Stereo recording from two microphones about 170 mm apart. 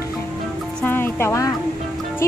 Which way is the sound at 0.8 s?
15° left (ahead or behind).